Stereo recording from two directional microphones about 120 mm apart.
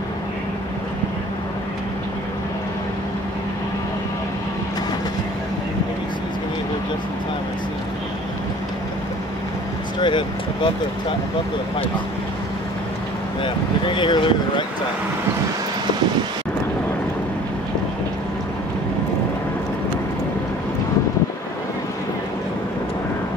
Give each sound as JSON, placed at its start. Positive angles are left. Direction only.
{"t": 9.9, "sound": "speech", "side_deg": 40}
{"t": 13.4, "sound": "speech", "side_deg": 45}